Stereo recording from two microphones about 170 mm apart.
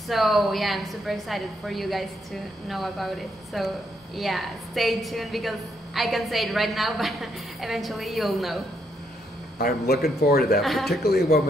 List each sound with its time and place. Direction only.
0.1 s a woman's voice: centre (ahead or behind)
9.6 s a man's voice: 65° left (ahead or behind)
10.6 s a woman's voice: centre (ahead or behind)
10.9 s a man's voice: 65° left (ahead or behind)